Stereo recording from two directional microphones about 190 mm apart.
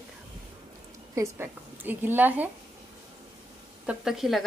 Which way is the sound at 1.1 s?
15° right (ahead or behind).